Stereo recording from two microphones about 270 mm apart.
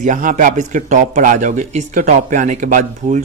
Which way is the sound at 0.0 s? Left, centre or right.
Right.